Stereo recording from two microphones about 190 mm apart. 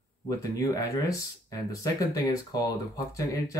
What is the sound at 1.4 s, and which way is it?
Speech, 15° left (ahead or behind).